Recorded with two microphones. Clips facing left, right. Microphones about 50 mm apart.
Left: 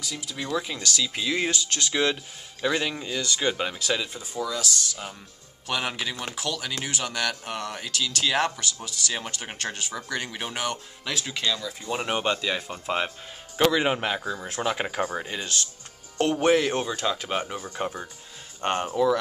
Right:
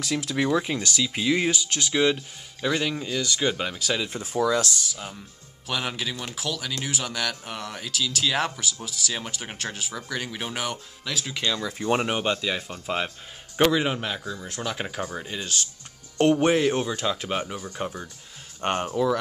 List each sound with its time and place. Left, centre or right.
0.0 s speech: right
0.5 s speech: right
0.7 s speech: centre
4.2 s speech: right
4.6 s speech: centre
11.4 s speech: right
12.1 s speech: centre
13.8 s speech: left
16.3 s speech: centre
16.6 s speech: centre
18.6 s speech: centre